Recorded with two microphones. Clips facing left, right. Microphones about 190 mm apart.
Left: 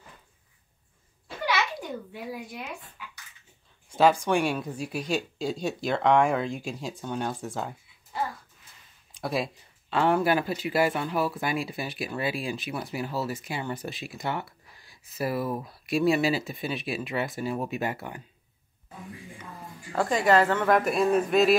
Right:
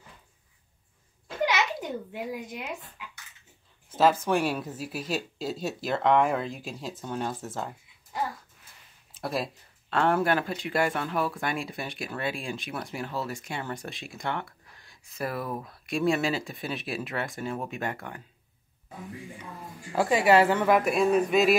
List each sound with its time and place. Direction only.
1.4 s a sound: 20° right (ahead or behind)
3.9 s speech: 5° right (ahead or behind)
9.1 s speech: centre (ahead or behind)
20.0 s speech: 5° right (ahead or behind)